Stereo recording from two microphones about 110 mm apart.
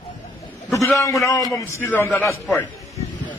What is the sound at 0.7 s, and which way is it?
A man's voice, 30° left (ahead or behind).